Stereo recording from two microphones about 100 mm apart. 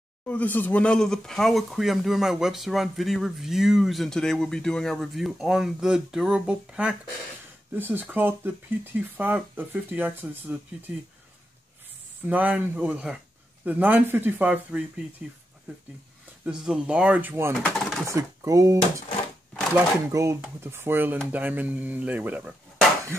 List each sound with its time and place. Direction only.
0.3 s speech: 15° left (ahead or behind); by 10.6 s 15° right (ahead or behind)
12.3 s speech: 15° right (ahead or behind)
16.4 s speech: 5° right (ahead or behind)
18.0 s speech: 30° right (ahead or behind)
20.1 s speech: 30° right (ahead or behind)